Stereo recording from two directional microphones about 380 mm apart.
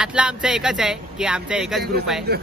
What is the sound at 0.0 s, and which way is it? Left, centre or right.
Speech, centre.